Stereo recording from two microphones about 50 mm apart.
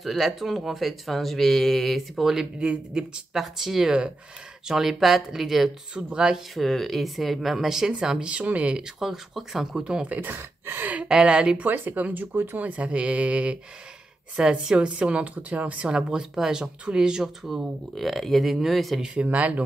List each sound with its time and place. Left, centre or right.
0.0 s speech: centre
2.6 s speech: centre
3.3 s speech: centre
5.9 s speech: centre
6.5 s speech: centre; by 8.8 s right
8.8 s speech: centre
9.8 s speech: centre
10.0 s speech: right
10.3 s speech: right
11.1 s speech: centre
11.6 s speech: right
16.1 s speech: centre
17.9 s speech: centre
19.2 s speech: right